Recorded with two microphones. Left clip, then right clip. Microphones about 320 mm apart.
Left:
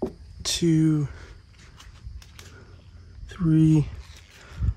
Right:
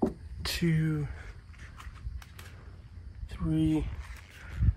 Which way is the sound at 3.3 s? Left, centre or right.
Left.